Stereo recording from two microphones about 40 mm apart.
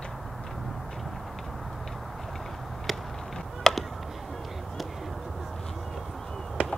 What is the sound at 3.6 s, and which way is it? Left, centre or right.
Chop, centre.